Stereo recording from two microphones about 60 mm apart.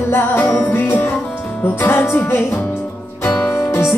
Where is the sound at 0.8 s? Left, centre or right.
Left.